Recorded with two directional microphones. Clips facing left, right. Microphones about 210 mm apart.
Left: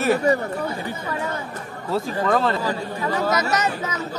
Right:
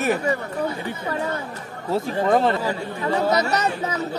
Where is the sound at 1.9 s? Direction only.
20° right (ahead or behind).